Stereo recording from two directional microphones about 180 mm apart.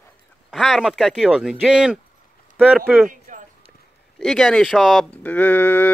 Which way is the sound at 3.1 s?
45° right (ahead or behind).